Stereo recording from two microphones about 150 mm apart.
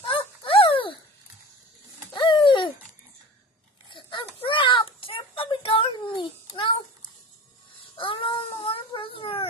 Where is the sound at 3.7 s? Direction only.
35° left (ahead or behind).